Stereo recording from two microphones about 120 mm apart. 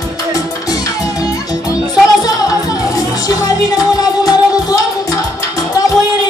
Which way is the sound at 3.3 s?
30° left (ahead or behind).